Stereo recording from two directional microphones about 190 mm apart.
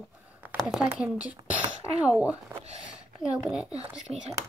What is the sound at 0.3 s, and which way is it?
Speech, 10° right (ahead or behind).